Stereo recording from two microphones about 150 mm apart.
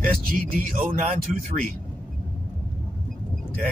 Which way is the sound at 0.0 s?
70° right (ahead or behind).